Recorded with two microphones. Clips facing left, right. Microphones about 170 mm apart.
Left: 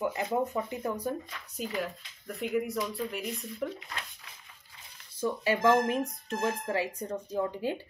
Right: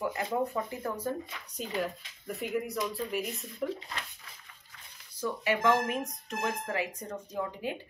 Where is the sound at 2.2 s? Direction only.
Centre (ahead or behind).